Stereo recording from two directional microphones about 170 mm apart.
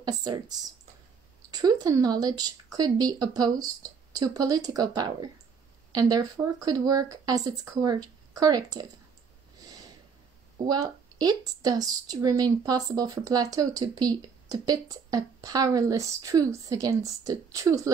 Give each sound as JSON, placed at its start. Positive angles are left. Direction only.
{"t": 0.0, "sound": "speech", "side_deg": -25}
{"t": 10.6, "sound": "speech", "side_deg": -25}